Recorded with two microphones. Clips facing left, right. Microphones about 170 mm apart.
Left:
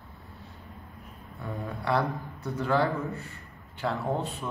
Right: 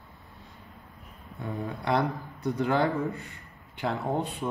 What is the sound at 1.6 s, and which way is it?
A man's voice, 20° right (ahead or behind).